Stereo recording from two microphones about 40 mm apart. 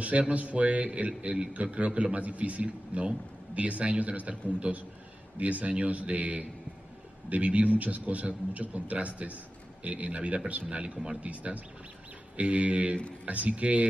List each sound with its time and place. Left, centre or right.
0.0 s a man's voice: right